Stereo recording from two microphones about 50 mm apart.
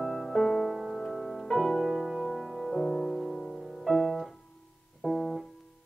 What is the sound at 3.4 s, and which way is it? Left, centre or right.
Music, centre.